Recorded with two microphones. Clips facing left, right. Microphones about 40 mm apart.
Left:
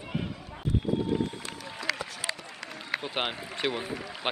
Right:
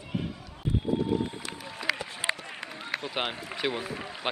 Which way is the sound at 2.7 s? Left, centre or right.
Centre.